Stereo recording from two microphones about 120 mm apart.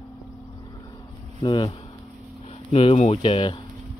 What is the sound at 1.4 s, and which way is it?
Speech, 40° left (ahead or behind).